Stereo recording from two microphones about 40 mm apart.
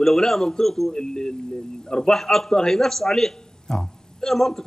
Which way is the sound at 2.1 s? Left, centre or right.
Centre.